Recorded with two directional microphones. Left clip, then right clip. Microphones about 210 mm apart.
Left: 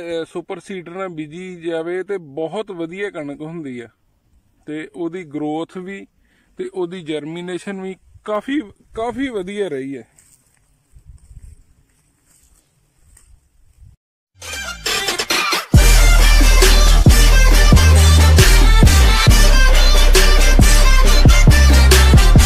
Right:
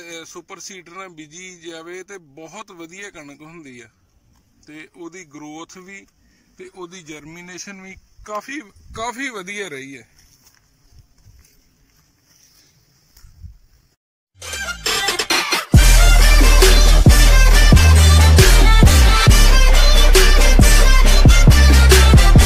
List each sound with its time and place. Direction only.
0.0 s a man's voice: 45° left (ahead or behind)
14.4 s music: centre (ahead or behind)